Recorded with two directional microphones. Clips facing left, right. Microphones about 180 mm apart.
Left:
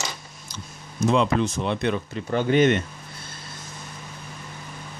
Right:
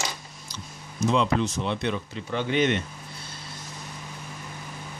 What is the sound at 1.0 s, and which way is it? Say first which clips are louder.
Speech: left 3 dB; 50° left (ahead or behind).